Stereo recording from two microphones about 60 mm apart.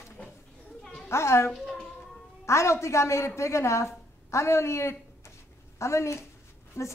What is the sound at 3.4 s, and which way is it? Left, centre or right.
A woman's voice, left.